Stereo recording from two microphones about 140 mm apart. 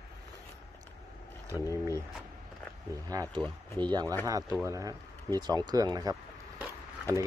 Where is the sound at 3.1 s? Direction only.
25° right (ahead or behind).